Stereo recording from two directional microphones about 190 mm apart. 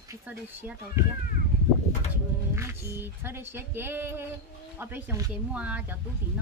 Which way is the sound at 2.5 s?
15° right (ahead or behind).